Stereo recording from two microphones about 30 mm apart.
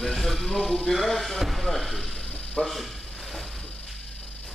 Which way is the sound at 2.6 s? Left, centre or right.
Left.